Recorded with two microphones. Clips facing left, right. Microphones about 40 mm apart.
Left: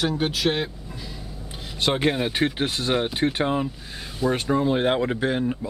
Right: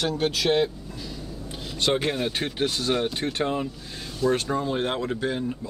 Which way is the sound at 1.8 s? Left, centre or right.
Centre.